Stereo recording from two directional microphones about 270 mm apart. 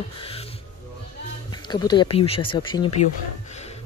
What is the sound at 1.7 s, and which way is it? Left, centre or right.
Speech, centre.